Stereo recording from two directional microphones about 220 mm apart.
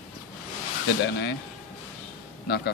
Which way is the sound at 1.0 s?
50° left (ahead or behind).